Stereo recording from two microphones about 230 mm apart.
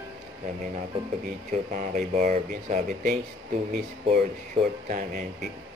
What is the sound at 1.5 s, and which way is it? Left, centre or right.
Speech, right.